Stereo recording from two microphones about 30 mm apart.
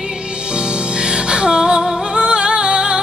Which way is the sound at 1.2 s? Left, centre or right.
Right.